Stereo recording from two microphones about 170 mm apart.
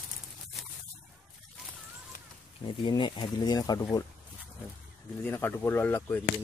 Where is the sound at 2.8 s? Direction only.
30° left (ahead or behind).